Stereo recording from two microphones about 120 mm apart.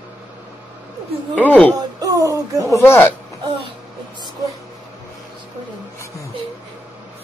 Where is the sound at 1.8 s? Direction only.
30° right (ahead or behind).